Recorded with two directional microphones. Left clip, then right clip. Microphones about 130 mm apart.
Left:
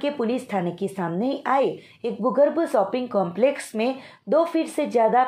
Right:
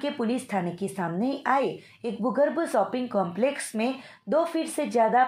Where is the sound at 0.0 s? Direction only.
25° left (ahead or behind).